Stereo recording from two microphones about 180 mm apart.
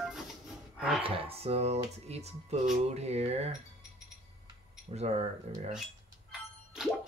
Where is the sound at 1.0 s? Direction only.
30° right (ahead or behind).